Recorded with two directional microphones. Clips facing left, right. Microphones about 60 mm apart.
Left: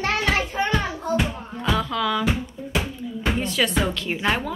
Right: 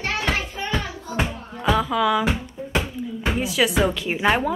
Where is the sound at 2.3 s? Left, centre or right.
Right.